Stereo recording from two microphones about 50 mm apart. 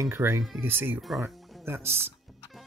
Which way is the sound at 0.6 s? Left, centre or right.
Right.